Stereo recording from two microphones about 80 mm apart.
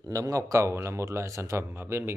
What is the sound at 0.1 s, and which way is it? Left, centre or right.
A man's voice, right.